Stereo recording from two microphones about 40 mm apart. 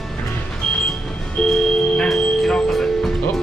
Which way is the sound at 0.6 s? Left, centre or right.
Centre.